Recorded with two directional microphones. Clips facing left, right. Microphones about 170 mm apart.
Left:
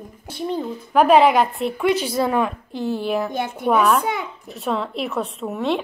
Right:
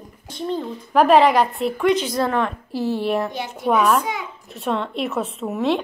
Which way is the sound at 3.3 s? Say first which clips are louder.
Left 4 dB; 50° left (ahead or behind).